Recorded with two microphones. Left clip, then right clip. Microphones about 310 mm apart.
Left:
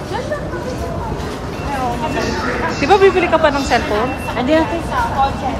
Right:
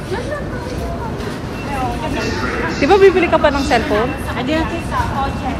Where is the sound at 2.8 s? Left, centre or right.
Centre.